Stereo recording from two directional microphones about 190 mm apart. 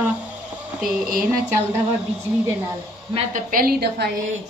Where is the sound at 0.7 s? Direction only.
5° right (ahead or behind).